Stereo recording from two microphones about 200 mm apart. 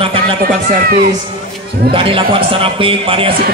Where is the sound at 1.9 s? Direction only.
25° right (ahead or behind).